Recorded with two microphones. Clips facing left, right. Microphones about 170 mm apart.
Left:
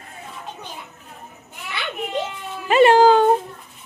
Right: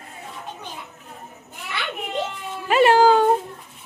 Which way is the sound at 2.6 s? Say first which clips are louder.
Left 2 dB; 5° right (ahead or behind).